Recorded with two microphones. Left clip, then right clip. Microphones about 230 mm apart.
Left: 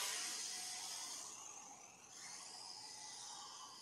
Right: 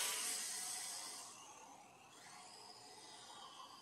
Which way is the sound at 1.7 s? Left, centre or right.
Centre.